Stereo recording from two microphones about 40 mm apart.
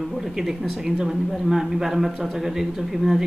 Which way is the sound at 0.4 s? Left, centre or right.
Centre.